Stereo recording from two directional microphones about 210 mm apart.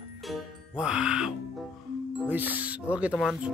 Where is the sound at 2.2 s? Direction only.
10° right (ahead or behind).